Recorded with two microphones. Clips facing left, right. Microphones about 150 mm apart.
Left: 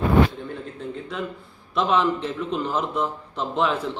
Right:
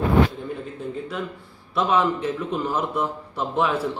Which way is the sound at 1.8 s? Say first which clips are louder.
Even; 5° right (ahead or behind).